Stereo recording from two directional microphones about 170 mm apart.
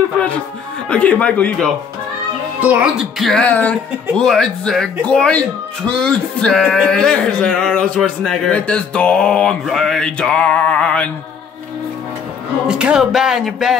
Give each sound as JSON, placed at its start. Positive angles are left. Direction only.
{"t": 0.8, "sound": "speech", "side_deg": 10}
{"t": 2.6, "sound": "speech", "side_deg": -5}
{"t": 12.6, "sound": "speech", "side_deg": -5}